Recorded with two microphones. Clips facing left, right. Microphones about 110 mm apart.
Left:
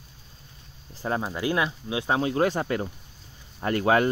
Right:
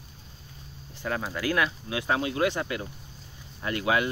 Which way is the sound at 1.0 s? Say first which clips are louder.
Left 3 dB; 25° left (ahead or behind).